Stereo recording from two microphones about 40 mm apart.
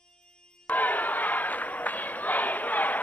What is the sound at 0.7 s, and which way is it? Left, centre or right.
Crowd, left.